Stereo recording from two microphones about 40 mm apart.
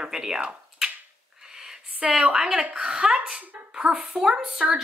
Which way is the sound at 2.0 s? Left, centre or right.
Centre.